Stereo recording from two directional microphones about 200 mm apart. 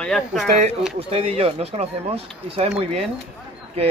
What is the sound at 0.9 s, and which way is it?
Speech, 30° right (ahead or behind).